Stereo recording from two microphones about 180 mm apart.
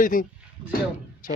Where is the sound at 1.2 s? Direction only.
50° left (ahead or behind).